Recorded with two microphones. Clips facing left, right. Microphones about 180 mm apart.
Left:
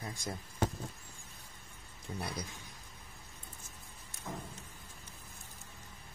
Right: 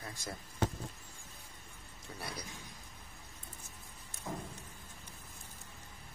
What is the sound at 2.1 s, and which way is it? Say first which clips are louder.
Speech: left 6 dB; 20° left (ahead or behind).